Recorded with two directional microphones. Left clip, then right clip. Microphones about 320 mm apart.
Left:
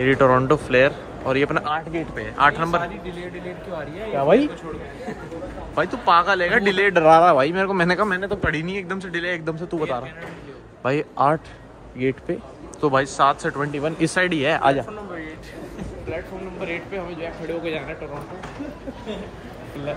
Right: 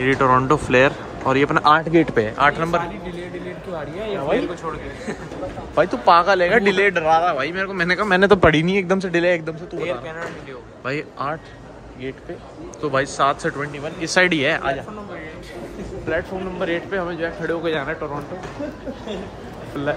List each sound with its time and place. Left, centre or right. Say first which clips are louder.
0.0 s speech: even; centre
1.8 s speech: right 10 dB; right
2.1 s speech: right 1 dB; centre
5.8 s speech: right 3 dB; centre
7.0 s speech: left 4 dB; centre
8.5 s speech: right 8 dB; centre
10.8 s speech: left 6 dB; centre
12.0 s speech: left 8 dB; centre
12.8 s speech: left 1 dB; centre
13.7 s speech: left 4 dB; centre
14.1 s speech: right 6 dB; centre
16.6 s speech: right 6 dB; centre